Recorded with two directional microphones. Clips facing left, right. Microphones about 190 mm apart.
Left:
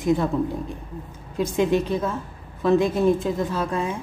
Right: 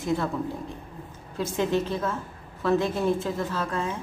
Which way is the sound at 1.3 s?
15° left (ahead or behind).